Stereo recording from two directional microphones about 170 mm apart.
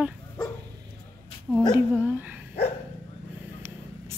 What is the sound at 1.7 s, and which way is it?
Speech, 10° right (ahead or behind).